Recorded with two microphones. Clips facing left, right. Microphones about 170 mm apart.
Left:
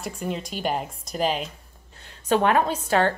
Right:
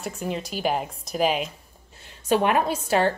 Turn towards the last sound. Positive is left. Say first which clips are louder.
# even
turn(degrees=-10)  # may be behind; listen again after turning